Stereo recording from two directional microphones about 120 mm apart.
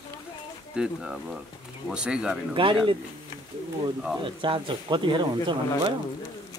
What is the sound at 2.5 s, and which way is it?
Speech, 45° right (ahead or behind).